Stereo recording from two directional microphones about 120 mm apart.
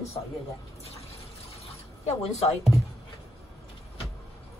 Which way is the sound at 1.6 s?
65° left (ahead or behind).